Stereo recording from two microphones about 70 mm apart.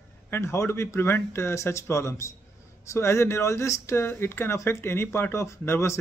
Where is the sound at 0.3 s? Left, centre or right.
Left.